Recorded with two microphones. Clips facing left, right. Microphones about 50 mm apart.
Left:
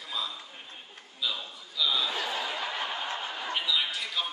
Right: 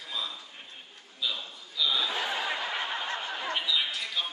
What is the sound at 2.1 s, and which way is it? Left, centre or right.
Snicker, right.